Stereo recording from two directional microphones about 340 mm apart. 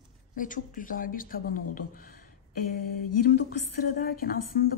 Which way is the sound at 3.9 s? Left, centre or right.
Left.